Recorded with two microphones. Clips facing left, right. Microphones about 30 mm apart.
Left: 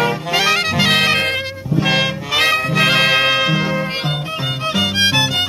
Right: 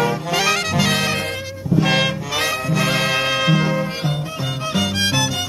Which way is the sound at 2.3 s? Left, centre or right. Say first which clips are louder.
Left 7 dB; left.